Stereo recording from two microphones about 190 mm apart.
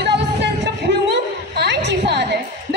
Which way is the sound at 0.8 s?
65° right (ahead or behind).